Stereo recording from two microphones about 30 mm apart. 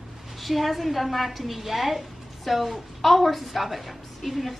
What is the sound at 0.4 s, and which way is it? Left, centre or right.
A woman's voice, centre.